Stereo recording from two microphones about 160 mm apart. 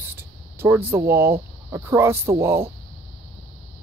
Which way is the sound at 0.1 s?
15° right (ahead or behind).